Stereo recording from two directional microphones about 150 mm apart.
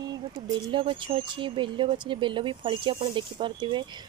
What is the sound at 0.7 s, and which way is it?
Speech, 35° right (ahead or behind).